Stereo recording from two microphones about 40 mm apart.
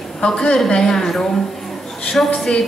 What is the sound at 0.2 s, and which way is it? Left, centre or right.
A woman's voice, left.